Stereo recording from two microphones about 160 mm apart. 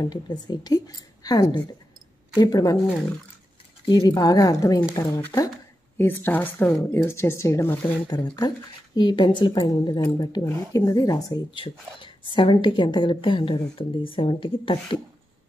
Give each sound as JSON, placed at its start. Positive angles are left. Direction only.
{"t": 0.0, "sound": "speech", "side_deg": 25}
{"t": 3.8, "sound": "speech", "side_deg": 25}
{"t": 8.4, "sound": "speech", "side_deg": 25}